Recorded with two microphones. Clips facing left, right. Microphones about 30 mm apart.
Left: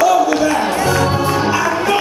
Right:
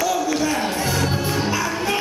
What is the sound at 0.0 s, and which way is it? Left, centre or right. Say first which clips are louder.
Music: left 8 dB; centre.